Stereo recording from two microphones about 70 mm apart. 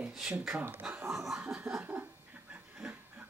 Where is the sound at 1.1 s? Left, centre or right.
Centre.